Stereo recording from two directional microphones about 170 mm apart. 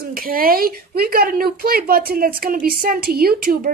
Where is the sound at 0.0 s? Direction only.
60° right (ahead or behind).